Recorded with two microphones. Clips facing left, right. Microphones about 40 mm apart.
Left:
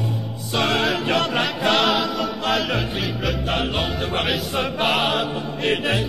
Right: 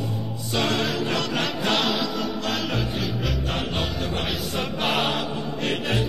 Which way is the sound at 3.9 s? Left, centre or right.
Left.